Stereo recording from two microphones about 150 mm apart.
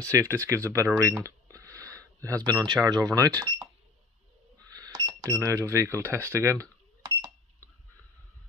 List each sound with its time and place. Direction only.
0.0 s speech: 20° right (ahead or behind)
4.7 s cash register: 25° right (ahead or behind)